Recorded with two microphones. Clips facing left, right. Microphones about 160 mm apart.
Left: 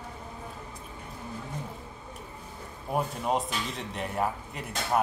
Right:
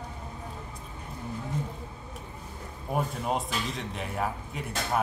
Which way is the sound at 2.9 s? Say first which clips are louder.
Left 1 dB; centre (ahead or behind).